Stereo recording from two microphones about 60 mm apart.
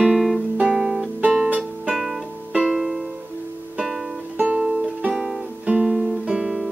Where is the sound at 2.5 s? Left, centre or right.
Centre.